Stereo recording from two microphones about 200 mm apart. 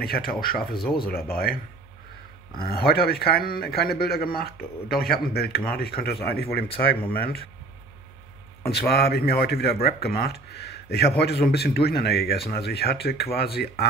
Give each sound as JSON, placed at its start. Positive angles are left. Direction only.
{"t": 0.0, "sound": "speech", "side_deg": 50}
{"t": 8.7, "sound": "speech", "side_deg": 55}